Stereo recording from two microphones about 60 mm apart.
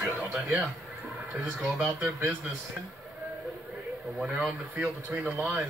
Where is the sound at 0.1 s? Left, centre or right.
Right.